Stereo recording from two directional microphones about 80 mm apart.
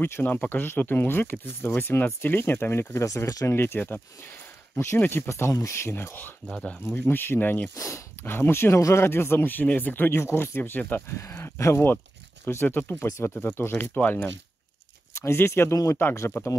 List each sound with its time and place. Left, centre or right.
0.0 s speech: left
3.1 s speech: left
3.5 s speech: left
5.9 s speech: left
6.4 s speech: centre
6.9 s speech: left
7.7 s speech: left
8.2 s speech: left
11.1 s speech: left